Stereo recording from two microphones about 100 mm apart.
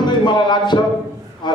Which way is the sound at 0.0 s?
50° left (ahead or behind).